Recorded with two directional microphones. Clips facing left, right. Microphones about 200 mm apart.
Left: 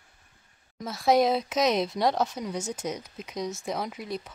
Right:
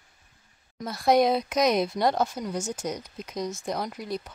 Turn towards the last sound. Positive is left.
turn(degrees=0)  # may be behind; listen again after turning